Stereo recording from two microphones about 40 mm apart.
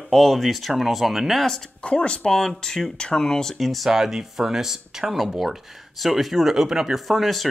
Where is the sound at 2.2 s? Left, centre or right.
Centre.